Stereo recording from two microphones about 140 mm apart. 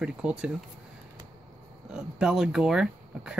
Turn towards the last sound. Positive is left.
turn(degrees=-5)  # may be behind; listen again after turning